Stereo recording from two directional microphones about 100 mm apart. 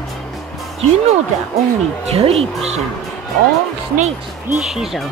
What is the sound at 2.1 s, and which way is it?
Speech, 75° right (ahead or behind).